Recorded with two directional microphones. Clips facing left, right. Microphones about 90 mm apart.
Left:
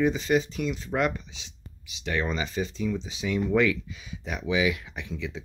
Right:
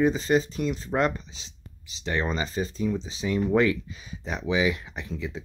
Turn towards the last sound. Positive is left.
turn(degrees=-40)  # may be behind; listen again after turning